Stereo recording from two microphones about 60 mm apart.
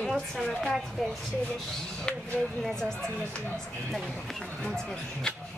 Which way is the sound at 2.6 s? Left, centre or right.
Centre.